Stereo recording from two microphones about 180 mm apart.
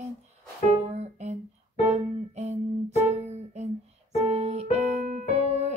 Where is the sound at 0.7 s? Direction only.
35° right (ahead or behind).